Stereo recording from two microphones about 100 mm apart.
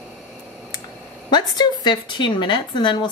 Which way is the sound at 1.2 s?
45° left (ahead or behind).